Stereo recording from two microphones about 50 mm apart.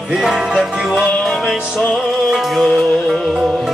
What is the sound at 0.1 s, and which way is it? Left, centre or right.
Music, centre.